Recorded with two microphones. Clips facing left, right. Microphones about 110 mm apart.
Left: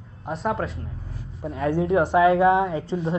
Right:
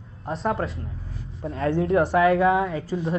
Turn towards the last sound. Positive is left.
turn(degrees=25)  # may be behind; listen again after turning